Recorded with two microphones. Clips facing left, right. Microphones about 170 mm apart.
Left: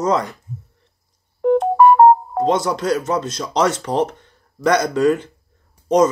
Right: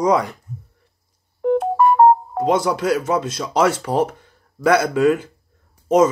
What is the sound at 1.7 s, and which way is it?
Music, 65° left (ahead or behind).